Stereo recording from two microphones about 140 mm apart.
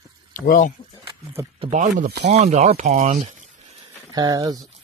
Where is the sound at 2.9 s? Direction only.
75° right (ahead or behind).